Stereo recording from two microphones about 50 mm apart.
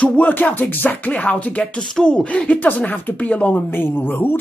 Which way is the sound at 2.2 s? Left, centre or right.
Left.